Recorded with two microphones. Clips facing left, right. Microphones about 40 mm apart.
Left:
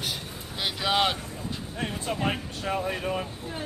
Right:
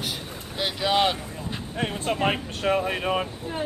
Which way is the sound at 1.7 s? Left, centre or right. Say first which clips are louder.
Right 5 dB; right.